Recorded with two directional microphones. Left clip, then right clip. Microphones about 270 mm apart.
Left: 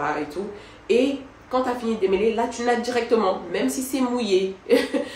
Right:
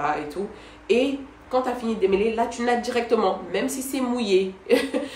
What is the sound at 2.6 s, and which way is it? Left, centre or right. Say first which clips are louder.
Speech: left 2 dB; centre.